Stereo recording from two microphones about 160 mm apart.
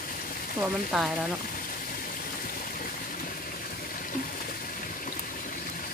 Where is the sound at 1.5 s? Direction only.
60° left (ahead or behind).